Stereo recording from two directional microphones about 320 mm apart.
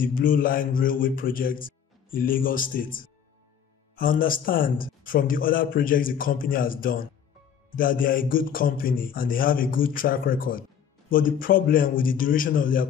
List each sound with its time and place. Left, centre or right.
0.0 s a man's voice: left